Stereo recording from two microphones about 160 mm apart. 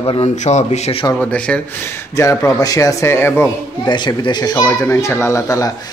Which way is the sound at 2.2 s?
20° left (ahead or behind).